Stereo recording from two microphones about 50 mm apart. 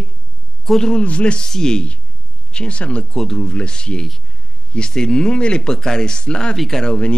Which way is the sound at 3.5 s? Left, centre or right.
Centre.